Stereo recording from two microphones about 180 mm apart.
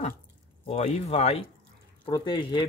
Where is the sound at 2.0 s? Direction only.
25° left (ahead or behind).